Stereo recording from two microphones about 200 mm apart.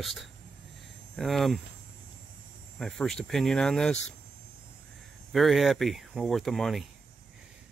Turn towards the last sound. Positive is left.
turn(degrees=0)  # may be behind; listen again after turning